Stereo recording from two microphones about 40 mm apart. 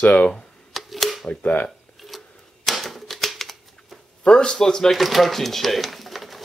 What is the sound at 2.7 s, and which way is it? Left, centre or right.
Typewriter, centre.